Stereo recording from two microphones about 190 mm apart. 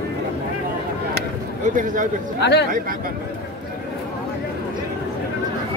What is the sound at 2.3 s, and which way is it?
Speech, 65° left (ahead or behind).